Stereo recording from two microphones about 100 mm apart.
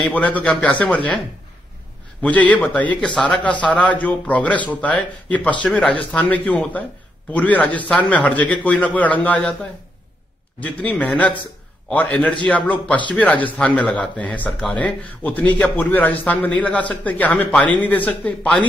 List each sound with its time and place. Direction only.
0.1 s a man's voice: 15° left (ahead or behind)
2.2 s a man's voice: 15° left (ahead or behind)